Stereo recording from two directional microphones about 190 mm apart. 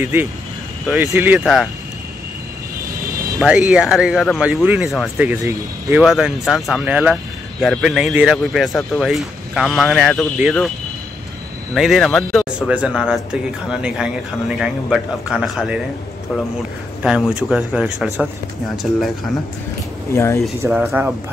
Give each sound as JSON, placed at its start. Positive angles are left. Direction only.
{"t": 0.0, "sound": "speech", "side_deg": -10}
{"t": 1.4, "sound": "a man's voice", "side_deg": 0}
{"t": 3.3, "sound": "a man's voice", "side_deg": -5}
{"t": 5.1, "sound": "a man's voice", "side_deg": -10}
{"t": 11.7, "sound": "a man's voice", "side_deg": 0}
{"t": 17.0, "sound": "a man's voice", "side_deg": -5}
{"t": 20.1, "sound": "speech", "side_deg": 15}
{"t": 20.7, "sound": "a man's voice", "side_deg": -5}